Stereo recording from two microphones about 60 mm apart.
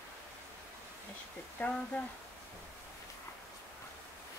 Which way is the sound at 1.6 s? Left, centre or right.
Left.